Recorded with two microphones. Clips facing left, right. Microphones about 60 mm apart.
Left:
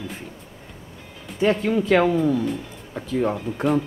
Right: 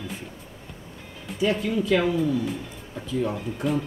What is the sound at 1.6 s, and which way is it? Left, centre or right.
Speech, left.